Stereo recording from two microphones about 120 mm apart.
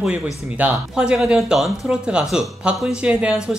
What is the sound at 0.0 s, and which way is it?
Speech, 10° right (ahead or behind).